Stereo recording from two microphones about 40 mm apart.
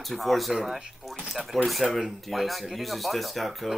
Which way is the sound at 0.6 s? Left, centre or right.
Centre.